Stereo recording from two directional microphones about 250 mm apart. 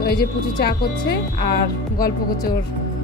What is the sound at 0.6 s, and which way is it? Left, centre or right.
Speech, left.